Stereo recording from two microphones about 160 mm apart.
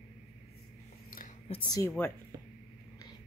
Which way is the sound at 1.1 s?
65° left (ahead or behind).